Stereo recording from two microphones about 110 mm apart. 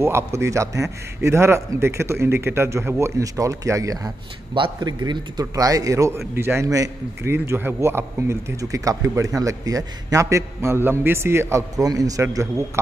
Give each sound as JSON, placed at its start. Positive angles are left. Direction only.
{"t": 0.0, "sound": "a man's voice", "side_deg": -25}
{"t": 4.6, "sound": "a man's voice", "side_deg": -45}